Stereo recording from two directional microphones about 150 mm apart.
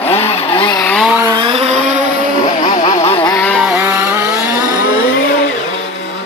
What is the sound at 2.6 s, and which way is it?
Music, 55° left (ahead or behind).